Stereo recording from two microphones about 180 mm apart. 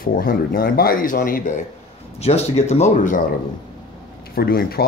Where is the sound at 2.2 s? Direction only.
35° left (ahead or behind).